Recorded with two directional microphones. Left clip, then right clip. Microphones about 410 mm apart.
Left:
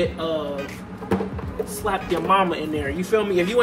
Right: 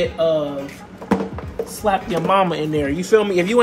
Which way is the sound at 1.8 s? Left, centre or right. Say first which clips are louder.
Right 5 dB; centre.